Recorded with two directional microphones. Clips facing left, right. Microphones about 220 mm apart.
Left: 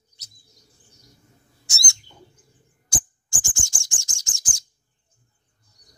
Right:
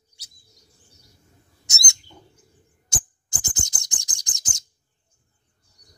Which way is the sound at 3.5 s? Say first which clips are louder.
Right 2 dB; 20° right (ahead or behind).